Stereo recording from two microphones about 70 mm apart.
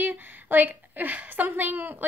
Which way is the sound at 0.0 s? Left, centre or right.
Right.